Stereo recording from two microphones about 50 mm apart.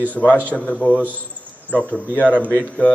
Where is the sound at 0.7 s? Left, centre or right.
Centre.